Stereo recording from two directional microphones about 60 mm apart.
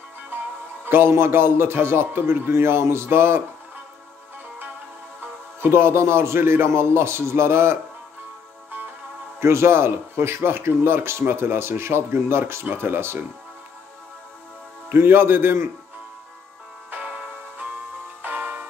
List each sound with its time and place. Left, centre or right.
0.3 s music: right
0.8 s a man's voice: right
5.6 s speech: right
9.4 s a man's voice: right
14.9 s a man's voice: right
16.9 s music: centre
18.2 s music: right